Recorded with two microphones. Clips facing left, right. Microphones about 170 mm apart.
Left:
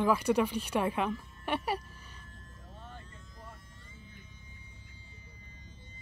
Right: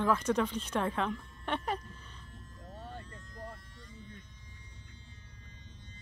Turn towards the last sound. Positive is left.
turn(degrees=5)  # may be behind; listen again after turning